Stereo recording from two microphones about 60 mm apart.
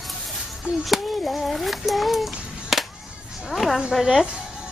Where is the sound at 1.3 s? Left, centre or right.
Centre.